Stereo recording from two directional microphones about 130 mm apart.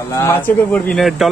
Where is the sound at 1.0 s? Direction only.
Centre (ahead or behind).